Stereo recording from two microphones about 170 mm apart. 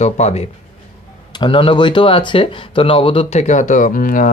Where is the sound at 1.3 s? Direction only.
30° left (ahead or behind).